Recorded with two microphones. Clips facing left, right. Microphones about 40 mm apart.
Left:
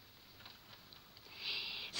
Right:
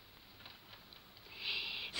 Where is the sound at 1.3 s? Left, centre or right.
Centre.